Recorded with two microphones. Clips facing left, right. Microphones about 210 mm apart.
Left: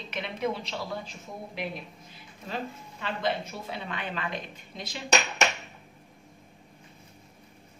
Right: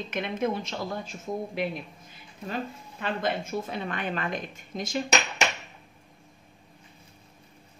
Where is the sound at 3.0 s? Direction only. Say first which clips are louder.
Right 1 dB; 50° right (ahead or behind).